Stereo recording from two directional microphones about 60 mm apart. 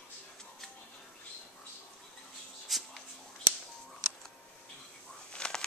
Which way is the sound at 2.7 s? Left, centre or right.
Centre.